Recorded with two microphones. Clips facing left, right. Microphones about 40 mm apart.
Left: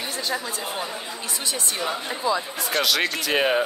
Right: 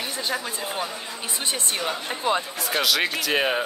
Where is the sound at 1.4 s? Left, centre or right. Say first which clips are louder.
Right 2 dB; right.